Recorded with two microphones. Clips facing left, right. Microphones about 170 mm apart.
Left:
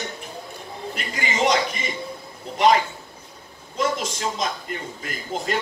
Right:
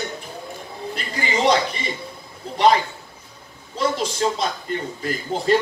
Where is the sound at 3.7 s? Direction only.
35° right (ahead or behind).